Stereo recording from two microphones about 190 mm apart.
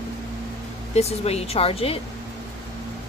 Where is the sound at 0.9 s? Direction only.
30° left (ahead or behind).